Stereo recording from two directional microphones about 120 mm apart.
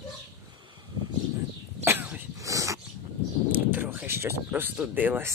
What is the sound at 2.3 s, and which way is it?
Dog, 25° right (ahead or behind).